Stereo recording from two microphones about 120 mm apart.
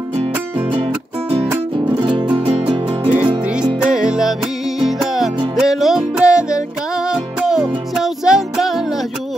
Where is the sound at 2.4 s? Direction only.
50° right (ahead or behind).